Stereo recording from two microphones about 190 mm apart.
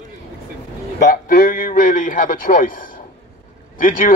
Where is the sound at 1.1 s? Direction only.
50° left (ahead or behind).